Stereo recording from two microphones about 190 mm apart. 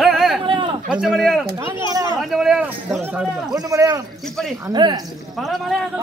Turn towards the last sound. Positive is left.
turn(degrees=0)  # may be behind; listen again after turning